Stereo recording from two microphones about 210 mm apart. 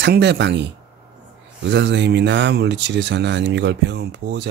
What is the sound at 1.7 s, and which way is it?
Speech, 55° right (ahead or behind).